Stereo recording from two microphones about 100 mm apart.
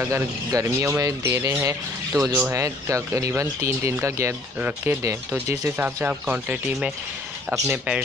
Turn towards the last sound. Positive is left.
turn(degrees=-10)  # may be behind; listen again after turning